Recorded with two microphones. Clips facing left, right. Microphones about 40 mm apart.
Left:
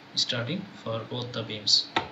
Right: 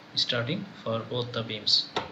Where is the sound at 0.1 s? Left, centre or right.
Centre.